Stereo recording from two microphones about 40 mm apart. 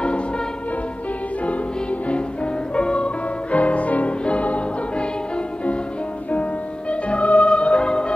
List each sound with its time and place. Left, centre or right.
2.7 s music: left
6.9 s music: left